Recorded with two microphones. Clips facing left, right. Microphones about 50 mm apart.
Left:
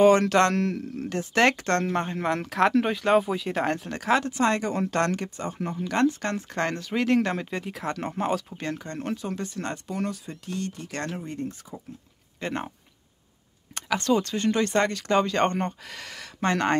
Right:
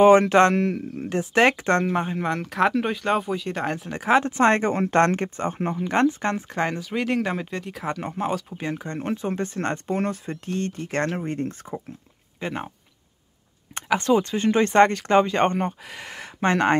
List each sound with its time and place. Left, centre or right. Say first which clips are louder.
0.0 s speech: right 4 dB; centre
2.0 s speech: right 1 dB; centre
3.9 s speech: right 5 dB; centre
4.2 s speech: right 5 dB; right
6.5 s speech: right 2 dB; centre
8.5 s speech: right 3 dB; centre; by 11.8 s right
12.4 s speech: right 1 dB; centre
13.7 s speech: right 4 dB; right